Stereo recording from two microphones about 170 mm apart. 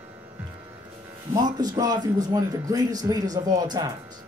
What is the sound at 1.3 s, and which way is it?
A man's voice, 25° right (ahead or behind).